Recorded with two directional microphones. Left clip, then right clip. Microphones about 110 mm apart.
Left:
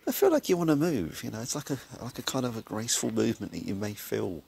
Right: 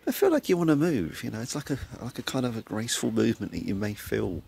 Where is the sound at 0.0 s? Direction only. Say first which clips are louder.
Right 1 dB; 20° right (ahead or behind).